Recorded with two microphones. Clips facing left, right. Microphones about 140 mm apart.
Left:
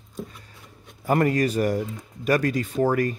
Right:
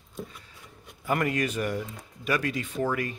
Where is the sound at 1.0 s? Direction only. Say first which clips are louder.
Left 6 dB; 40° left (ahead or behind).